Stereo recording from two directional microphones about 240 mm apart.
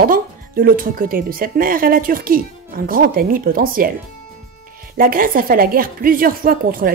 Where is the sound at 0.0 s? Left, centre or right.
Right.